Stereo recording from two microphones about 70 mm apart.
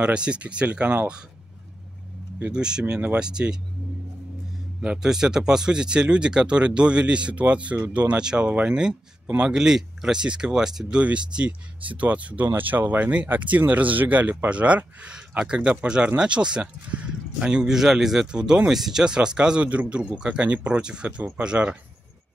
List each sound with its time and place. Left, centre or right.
0.0 s speech: centre
2.5 s speech: centre
2.8 s speech: right
4.8 s speech: centre